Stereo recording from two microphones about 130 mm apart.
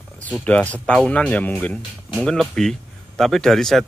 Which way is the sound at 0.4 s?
10° left (ahead or behind).